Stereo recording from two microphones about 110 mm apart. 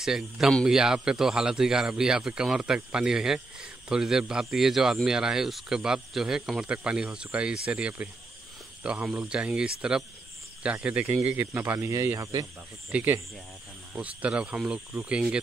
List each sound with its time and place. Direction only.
0.0 s speech: 5° right (ahead or behind); by 12.4 s 30° right (ahead or behind)
12.9 s speech: 15° right (ahead or behind)